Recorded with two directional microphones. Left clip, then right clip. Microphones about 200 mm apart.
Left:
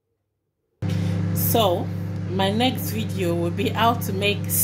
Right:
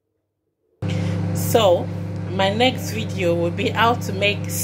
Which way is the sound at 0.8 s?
10° left (ahead or behind).